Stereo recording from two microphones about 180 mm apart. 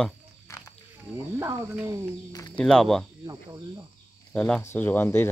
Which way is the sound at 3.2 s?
20° right (ahead or behind).